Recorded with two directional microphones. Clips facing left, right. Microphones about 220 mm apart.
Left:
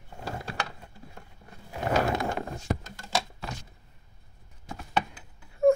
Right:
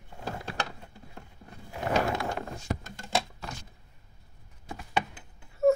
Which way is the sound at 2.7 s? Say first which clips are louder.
Left 3 dB; 55° left (ahead or behind).